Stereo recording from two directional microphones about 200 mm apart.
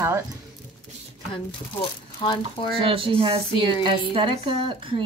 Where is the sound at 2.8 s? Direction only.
25° right (ahead or behind).